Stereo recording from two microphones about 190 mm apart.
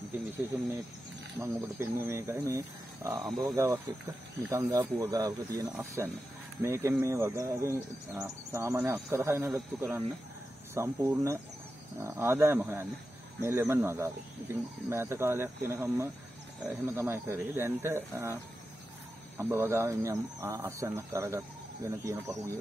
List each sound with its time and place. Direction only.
0.5 s speech: 5° right (ahead or behind)
1.4 s speech: 15° right (ahead or behind)